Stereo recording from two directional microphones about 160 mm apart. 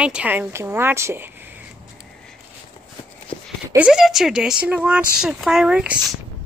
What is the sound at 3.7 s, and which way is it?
Speech, 5° right (ahead or behind).